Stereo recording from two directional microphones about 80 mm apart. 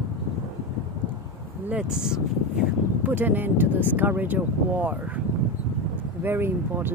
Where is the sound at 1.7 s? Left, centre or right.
Centre.